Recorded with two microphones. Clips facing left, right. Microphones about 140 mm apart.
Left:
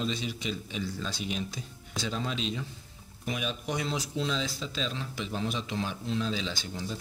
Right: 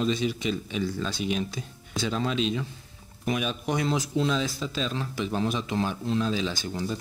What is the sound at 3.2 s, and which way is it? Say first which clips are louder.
A man's voice: right 5 dB; 60° right (ahead or behind).